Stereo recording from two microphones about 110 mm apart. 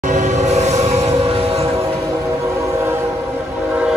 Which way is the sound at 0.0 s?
90° right.